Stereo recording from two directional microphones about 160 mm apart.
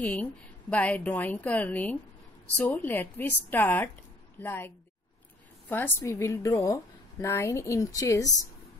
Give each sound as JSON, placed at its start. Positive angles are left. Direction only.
{"t": 0.0, "sound": "a woman's voice", "side_deg": 10}